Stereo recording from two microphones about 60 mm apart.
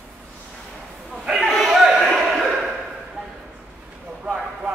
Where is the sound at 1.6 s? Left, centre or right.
Centre.